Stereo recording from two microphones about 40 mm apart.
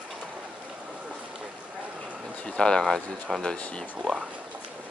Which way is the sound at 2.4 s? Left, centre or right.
Centre.